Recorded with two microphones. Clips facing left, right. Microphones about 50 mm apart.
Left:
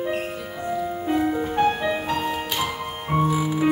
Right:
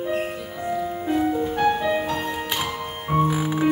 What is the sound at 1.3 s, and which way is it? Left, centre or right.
Music, left.